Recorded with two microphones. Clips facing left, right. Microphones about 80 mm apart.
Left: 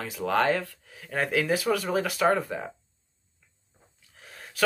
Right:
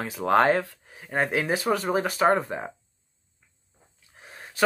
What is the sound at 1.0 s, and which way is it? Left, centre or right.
Speech, right.